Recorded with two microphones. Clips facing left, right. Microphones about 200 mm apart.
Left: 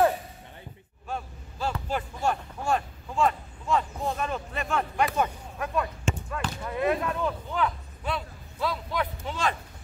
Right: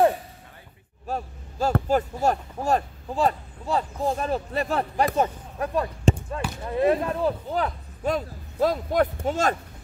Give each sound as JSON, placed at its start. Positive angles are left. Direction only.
{"t": 1.0, "sound": "speech", "side_deg": -40}